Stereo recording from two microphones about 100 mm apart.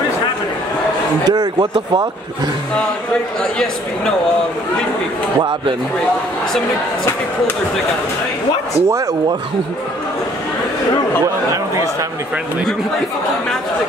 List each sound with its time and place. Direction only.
1.2 s speech: 45° right (ahead or behind)
11.5 s speech: 35° right (ahead or behind)